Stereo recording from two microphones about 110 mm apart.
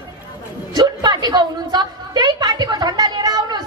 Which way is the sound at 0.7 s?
35° right (ahead or behind).